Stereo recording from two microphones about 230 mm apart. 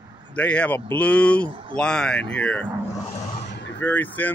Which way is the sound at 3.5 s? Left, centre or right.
Left.